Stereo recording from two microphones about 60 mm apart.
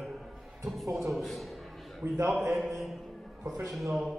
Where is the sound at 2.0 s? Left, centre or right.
Right.